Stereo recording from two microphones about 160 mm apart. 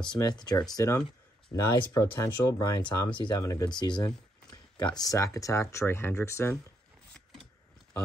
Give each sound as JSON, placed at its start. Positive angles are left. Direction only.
{"t": 0.0, "sound": "speech", "side_deg": 25}